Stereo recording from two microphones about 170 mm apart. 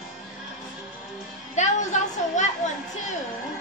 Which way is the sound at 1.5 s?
45° left (ahead or behind).